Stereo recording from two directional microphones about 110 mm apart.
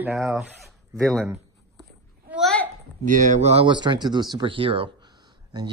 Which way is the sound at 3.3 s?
90° right.